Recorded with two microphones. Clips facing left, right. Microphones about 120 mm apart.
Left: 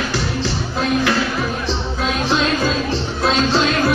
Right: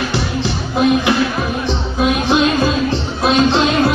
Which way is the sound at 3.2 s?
25° right (ahead or behind).